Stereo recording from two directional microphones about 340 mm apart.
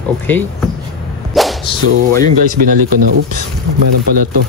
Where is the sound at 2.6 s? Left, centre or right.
Right.